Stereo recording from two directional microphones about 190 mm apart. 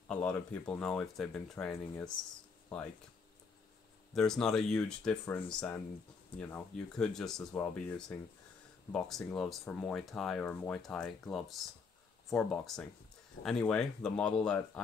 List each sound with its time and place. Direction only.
0.1 s speech: 5° left (ahead or behind)
4.1 s speech: 5° left (ahead or behind)